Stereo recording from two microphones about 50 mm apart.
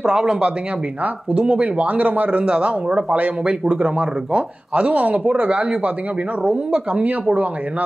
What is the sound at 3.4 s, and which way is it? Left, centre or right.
Speech, centre.